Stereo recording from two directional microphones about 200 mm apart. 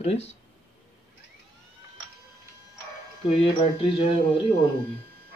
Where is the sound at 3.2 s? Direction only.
30° left (ahead or behind).